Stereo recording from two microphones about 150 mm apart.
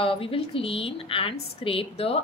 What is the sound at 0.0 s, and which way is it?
Speech, 40° left (ahead or behind).